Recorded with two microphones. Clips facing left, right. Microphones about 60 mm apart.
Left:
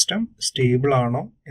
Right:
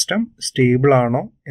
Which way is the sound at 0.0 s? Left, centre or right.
Right.